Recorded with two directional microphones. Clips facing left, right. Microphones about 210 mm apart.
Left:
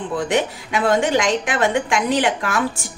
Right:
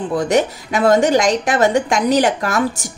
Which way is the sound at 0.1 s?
40° right (ahead or behind).